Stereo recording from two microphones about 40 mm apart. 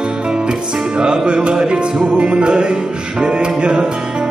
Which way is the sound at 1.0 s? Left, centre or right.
Right.